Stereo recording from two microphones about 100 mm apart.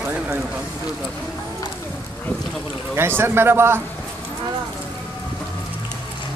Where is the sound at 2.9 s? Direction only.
25° right (ahead or behind).